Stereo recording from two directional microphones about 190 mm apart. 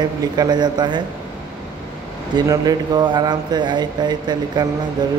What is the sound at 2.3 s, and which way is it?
Speech, 20° right (ahead or behind).